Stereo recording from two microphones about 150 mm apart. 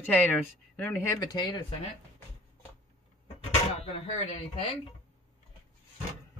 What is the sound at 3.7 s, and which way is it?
Speech, 40° left (ahead or behind).